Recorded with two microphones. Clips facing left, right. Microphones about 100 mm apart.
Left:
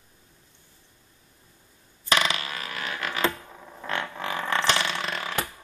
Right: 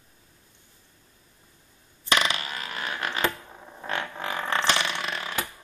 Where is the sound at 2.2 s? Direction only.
30° right (ahead or behind).